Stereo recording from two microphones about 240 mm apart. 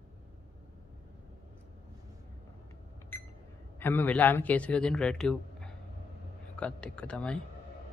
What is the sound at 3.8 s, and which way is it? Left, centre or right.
Speech, centre.